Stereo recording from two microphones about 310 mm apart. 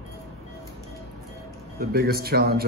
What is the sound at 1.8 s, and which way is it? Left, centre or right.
Speech, right.